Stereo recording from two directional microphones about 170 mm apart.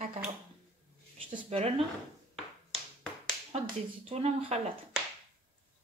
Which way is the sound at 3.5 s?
35° right (ahead or behind).